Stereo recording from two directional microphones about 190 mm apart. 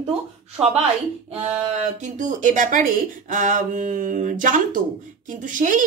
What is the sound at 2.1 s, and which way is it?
A woman's voice, 40° right (ahead or behind).